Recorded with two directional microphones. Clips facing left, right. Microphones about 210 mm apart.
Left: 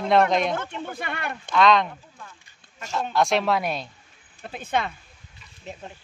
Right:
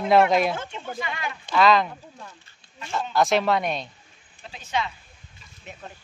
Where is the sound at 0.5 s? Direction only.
55° left (ahead or behind).